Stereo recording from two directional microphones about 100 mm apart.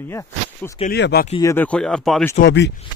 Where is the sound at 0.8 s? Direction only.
90° left.